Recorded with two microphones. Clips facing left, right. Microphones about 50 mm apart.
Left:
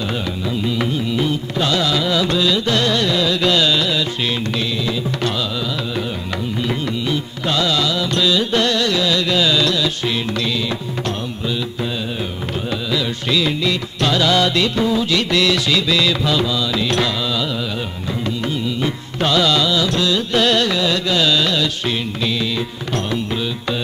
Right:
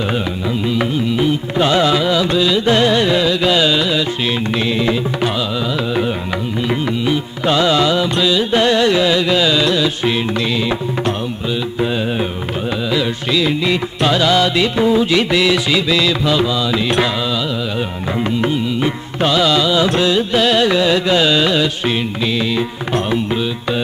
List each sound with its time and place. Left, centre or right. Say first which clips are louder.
0.7 s music: right 4 dB; centre
2.0 s music: right 3 dB; centre
2.6 s carnatic music: right 5 dB; right
3.3 s carnatic music: right 2 dB; centre
6.7 s music: right 6 dB; centre
13.3 s music: right 2 dB; centre
18.2 s music: right 5 dB; right
19.8 s music: right 4 dB; right
20.3 s music: even; centre
20.6 s music: right 5 dB; right